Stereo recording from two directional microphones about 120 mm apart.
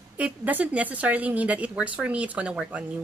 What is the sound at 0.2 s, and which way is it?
Speech, 15° right (ahead or behind).